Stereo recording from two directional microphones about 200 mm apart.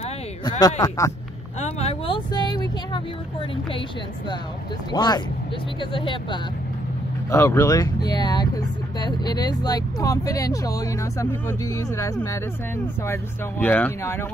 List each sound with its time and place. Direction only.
0.5 s speech: 20° left (ahead or behind)
1.6 s vehicle: 30° left (ahead or behind)
4.9 s speech: 20° left (ahead or behind)